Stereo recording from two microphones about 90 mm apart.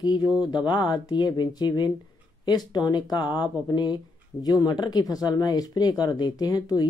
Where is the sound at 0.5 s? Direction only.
55° left (ahead or behind).